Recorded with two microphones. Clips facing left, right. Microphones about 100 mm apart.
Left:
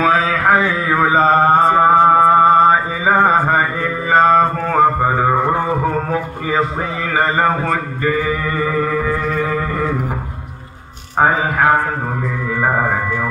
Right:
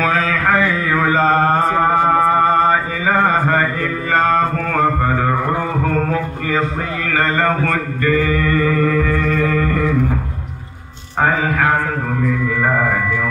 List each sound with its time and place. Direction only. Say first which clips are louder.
0.0 s mantra: left 2 dB; 10° left (ahead or behind)
7.1 s a sound: left 1 dB; 15° left (ahead or behind)
11.4 s mantra: left 2 dB; 20° left (ahead or behind)